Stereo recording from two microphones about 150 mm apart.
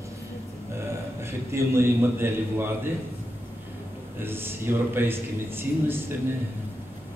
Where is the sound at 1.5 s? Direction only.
15° right (ahead or behind).